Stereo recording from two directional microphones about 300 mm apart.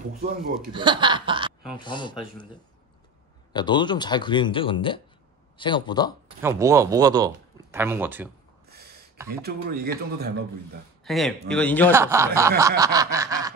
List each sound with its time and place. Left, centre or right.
0.7 s speech: centre
1.8 s speech: centre
3.5 s speech: centre
6.4 s speech: centre
8.6 s a sound: right
9.4 s speech: right
11.1 s a man's voice: centre
11.9 s speech: centre